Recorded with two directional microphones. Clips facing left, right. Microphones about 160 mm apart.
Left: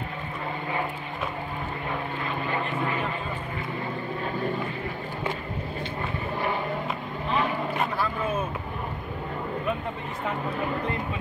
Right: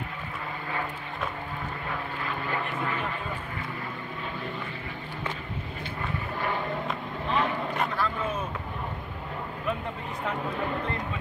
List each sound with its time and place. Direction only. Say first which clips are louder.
2.5 s vehicle: left 3 dB; 20° left (ahead or behind)
7.2 s vehicle: left 1 dB; centre (ahead or behind)
10.2 s speech: left 1 dB; 5° left (ahead or behind)